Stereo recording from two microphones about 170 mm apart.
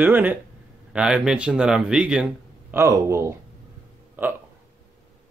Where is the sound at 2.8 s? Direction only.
15° right (ahead or behind).